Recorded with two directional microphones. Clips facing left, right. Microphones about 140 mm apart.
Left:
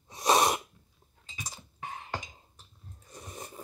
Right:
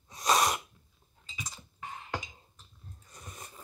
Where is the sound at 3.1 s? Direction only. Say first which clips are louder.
Left 5 dB; 30° left (ahead or behind).